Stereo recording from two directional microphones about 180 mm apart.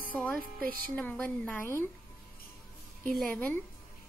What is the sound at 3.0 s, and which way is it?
Speech, 5° left (ahead or behind).